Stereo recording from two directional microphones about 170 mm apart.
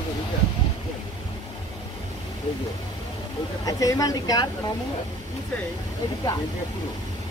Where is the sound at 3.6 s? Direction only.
20° left (ahead or behind).